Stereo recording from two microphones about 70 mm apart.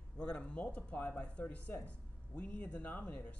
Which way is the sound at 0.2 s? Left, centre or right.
Centre.